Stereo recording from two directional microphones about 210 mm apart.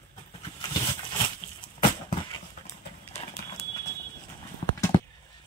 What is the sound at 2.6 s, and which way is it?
Clip-clop, 30° left (ahead or behind).